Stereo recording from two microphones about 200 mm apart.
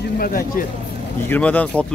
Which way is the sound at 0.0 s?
45° left (ahead or behind).